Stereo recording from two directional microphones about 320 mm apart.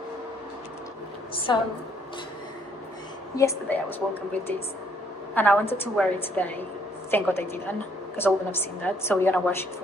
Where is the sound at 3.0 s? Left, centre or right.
Centre.